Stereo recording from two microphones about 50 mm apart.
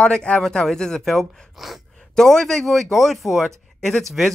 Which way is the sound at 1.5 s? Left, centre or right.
Centre.